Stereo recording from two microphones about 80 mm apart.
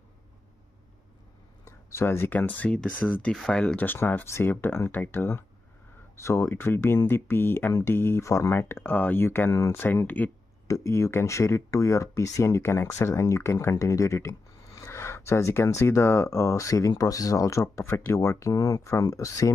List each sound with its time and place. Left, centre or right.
1.6 s speech: left; by 3.8 s centre
3.8 s speech: left
6.2 s speech: left
9.5 s speech: left
9.8 s speech: left
10.7 s speech: left